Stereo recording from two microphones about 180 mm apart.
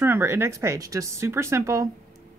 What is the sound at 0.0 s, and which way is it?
A woman's voice, 15° right (ahead or behind).